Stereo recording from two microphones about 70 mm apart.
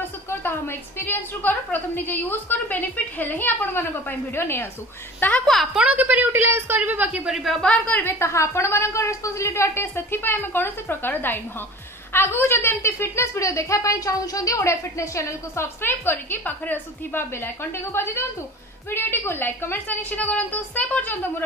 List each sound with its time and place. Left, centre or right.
0.3 s a woman's voice: left
5.4 s a woman's voice: centre
5.8 s a woman's voice: right
7.6 s a woman's voice: centre